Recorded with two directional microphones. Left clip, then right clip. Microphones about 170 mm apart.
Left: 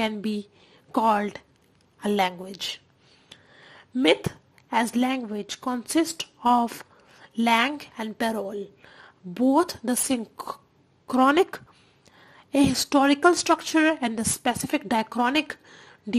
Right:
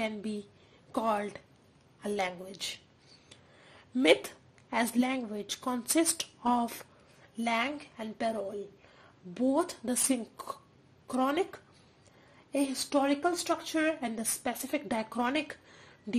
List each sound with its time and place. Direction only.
0.0 s a woman's voice: 30° left (ahead or behind)
3.3 s a sound: 25° left (ahead or behind)
4.6 s a woman's voice: 20° left (ahead or behind)